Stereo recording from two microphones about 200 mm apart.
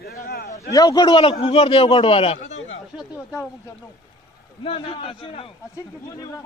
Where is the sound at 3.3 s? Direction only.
15° left (ahead or behind).